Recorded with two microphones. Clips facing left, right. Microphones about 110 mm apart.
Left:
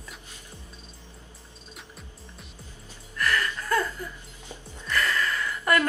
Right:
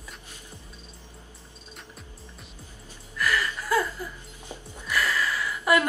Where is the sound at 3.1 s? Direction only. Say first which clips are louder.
Even; 5° right (ahead or behind).